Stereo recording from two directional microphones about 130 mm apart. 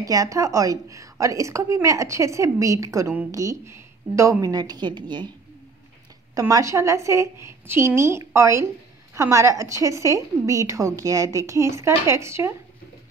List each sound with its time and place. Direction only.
0.0 s a woman's voice: 25° right (ahead or behind)
6.3 s a woman's voice: 25° right (ahead or behind)